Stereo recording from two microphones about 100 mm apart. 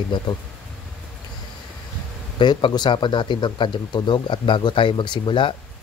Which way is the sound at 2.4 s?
50° left (ahead or behind).